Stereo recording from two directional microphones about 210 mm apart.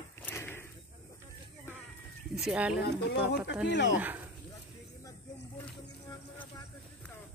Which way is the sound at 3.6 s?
55° left (ahead or behind).